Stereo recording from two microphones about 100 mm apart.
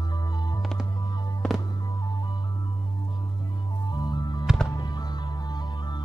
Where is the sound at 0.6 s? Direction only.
Centre (ahead or behind).